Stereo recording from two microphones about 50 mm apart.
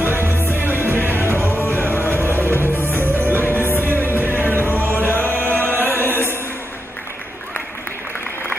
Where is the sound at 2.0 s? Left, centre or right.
Right.